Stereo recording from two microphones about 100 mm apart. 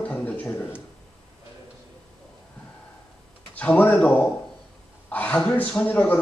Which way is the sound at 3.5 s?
15° left (ahead or behind).